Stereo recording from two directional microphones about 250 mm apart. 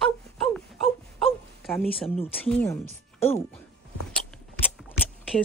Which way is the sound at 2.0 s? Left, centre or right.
Left.